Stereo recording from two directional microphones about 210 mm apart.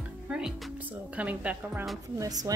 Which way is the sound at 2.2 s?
15° right (ahead or behind).